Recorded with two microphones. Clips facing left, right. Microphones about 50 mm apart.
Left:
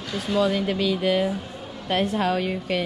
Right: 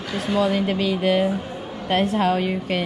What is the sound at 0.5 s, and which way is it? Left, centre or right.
A woman's voice, right.